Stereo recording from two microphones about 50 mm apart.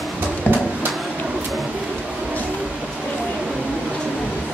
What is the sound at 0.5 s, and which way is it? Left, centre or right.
Music, left.